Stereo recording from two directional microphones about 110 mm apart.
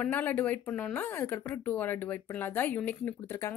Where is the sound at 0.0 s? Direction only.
15° left (ahead or behind).